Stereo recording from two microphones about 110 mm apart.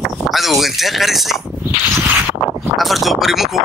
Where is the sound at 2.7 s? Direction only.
Centre (ahead or behind).